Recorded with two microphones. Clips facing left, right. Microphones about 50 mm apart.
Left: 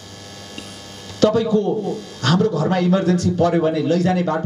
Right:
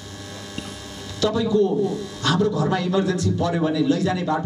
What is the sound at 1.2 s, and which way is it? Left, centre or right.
A man's voice, left.